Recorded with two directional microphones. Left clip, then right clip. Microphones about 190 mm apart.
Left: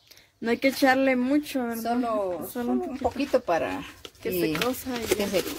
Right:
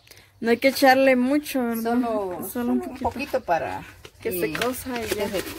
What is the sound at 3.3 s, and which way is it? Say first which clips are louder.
Speech: even; 45° left (ahead or behind).